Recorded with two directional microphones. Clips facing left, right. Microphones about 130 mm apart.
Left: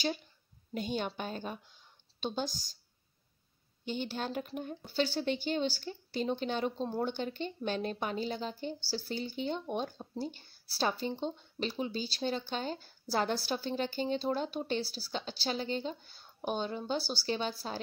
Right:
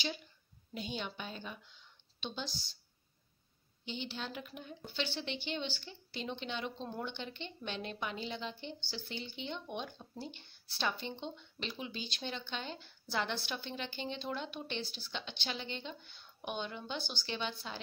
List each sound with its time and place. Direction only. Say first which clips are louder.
0.7 s a woman's voice: left 6 dB; 45° left (ahead or behind)
3.8 s a woman's voice: left 6 dB; 45° left (ahead or behind)